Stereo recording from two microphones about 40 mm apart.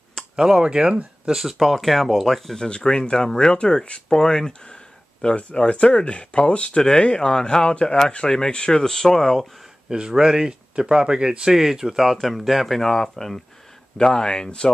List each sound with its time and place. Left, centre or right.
0.4 s speech: centre
1.3 s speech: centre
2.6 s speech: centre
5.2 s speech: left
8.9 s speech: centre
9.8 s speech: centre
13.9 s speech: centre